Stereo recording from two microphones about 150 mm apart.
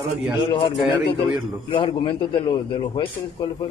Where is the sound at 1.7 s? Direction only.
35° left (ahead or behind).